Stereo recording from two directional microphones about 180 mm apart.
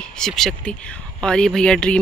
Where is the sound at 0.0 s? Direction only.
5° left (ahead or behind).